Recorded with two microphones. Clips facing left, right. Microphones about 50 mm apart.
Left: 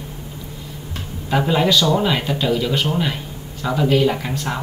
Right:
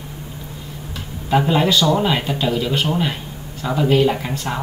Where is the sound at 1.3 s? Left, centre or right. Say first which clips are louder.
Right 1 dB; centre.